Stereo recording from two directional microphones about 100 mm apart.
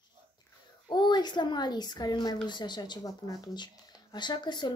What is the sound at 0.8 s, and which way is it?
A woman's voice, 50° left (ahead or behind).